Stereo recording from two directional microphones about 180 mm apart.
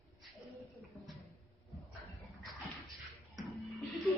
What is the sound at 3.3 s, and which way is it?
Music, centre (ahead or behind).